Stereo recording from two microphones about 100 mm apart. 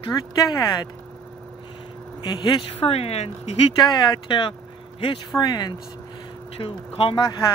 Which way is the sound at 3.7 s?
50° left (ahead or behind).